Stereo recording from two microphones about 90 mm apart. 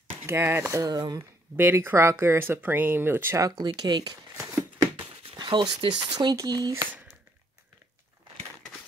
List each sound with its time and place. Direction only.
0.3 s speech: 30° right (ahead or behind); by 1.2 s 45° right (ahead or behind)
1.6 s speech: 25° right (ahead or behind)
3.3 s speech: 40° right (ahead or behind)
3.6 s speech: 50° right (ahead or behind)
5.2 s speech: 60° right (ahead or behind)
6.3 s speech: 45° right (ahead or behind)